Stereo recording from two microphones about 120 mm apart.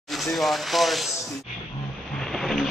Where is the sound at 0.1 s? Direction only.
Centre (ahead or behind).